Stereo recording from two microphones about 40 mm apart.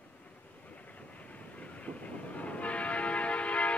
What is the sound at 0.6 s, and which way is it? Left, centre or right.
Train, left.